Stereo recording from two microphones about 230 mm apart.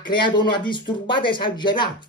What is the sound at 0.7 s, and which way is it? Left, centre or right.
Speech, left.